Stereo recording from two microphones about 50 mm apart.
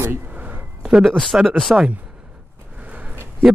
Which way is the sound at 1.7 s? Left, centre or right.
Centre.